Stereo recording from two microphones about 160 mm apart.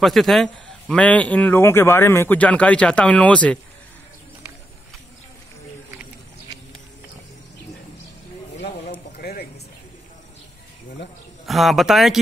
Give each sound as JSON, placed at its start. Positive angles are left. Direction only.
{"t": 0.0, "sound": "a man's voice", "side_deg": 0}
{"t": 9.1, "sound": "a sound", "side_deg": 80}
{"t": 11.4, "sound": "speech", "side_deg": 0}